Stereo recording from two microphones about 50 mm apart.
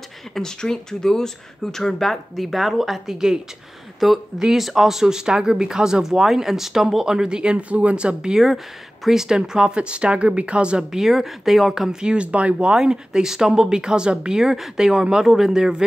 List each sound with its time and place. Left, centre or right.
0.3 s speech: centre; by 10.9 s right
10.9 s speech: centre